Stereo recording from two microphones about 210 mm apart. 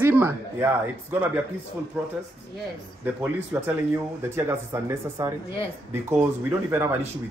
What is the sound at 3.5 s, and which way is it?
Speech, 5° right (ahead or behind).